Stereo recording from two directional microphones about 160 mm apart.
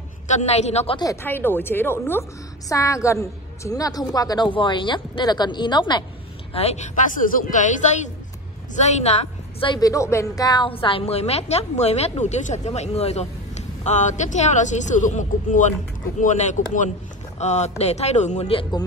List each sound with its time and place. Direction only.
0.3 s a woman's voice: 45° left (ahead or behind)
1.2 s a woman's voice: 15° left (ahead or behind)
6.5 s a woman's voice: 40° left (ahead or behind)
9.8 s a woman's voice: 20° left (ahead or behind)